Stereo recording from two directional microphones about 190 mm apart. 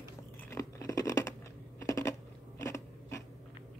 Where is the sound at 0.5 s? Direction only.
15° left (ahead or behind).